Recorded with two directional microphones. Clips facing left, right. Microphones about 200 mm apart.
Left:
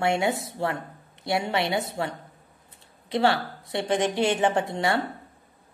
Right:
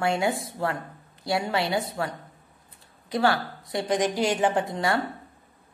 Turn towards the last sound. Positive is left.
turn(degrees=25)  # may be behind; listen again after turning